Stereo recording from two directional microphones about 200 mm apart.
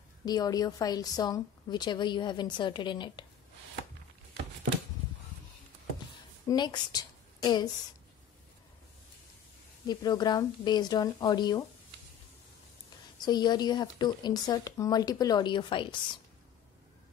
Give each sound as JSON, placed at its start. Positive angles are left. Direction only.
{"t": 0.2, "sound": "a woman's voice", "side_deg": 20}
{"t": 6.5, "sound": "a woman's voice", "side_deg": 20}
{"t": 9.8, "sound": "a woman's voice", "side_deg": 20}
{"t": 13.2, "sound": "a woman's voice", "side_deg": 20}